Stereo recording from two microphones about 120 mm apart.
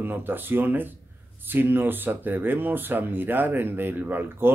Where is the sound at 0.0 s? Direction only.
15° right (ahead or behind).